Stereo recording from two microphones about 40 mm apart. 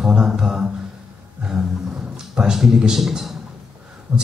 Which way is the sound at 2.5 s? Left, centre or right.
Centre.